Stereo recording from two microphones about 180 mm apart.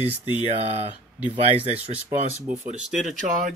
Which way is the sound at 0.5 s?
35° right (ahead or behind).